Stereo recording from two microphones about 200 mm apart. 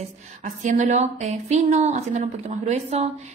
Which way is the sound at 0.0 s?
35° right (ahead or behind).